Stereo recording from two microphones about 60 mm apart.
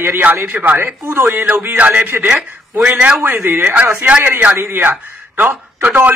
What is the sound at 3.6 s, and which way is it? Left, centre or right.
Speech, right.